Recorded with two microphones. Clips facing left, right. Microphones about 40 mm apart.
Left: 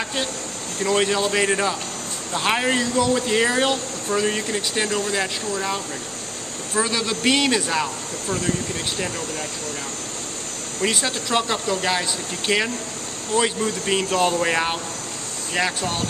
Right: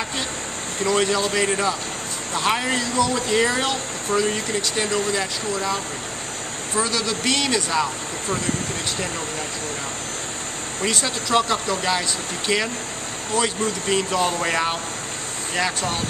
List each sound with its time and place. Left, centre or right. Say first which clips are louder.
0.8 s speech: even; centre
6.8 s a man's voice: left 1 dB; centre
10.8 s speech: left 1 dB; centre